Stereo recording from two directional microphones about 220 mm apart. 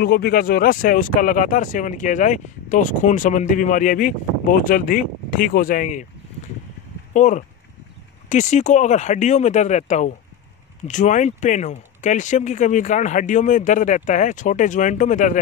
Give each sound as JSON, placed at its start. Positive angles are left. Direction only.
{"t": 0.0, "sound": "speech", "side_deg": 45}
{"t": 7.2, "sound": "speech", "side_deg": 35}